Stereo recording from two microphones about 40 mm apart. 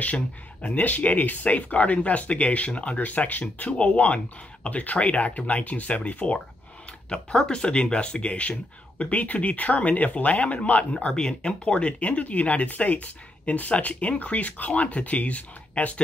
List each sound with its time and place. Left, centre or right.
0.0 s speech: left
3.7 s speech: left
7.1 s speech: centre
11.1 s speech: centre; by 16.0 s left